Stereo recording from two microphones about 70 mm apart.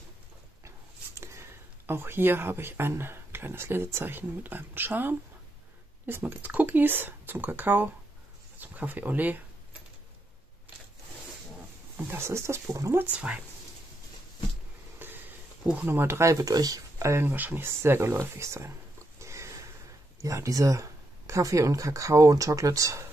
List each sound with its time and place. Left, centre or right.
0.7 s speech: right
12.0 s speech: right
13.1 s speech: centre
15.0 s a sound: right
15.6 s speech: centre
15.9 s speech: right
17.0 s speech: right
17.3 s speech: right
18.2 s a sound: right
20.2 s speech: right